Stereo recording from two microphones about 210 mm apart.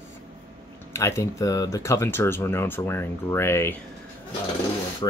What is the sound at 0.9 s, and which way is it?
Speech, 15° left (ahead or behind).